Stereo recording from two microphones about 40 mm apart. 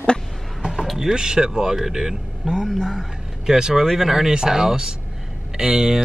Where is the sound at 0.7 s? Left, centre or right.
Centre.